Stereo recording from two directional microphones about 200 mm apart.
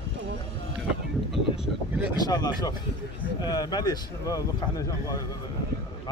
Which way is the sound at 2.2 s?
20° left (ahead or behind).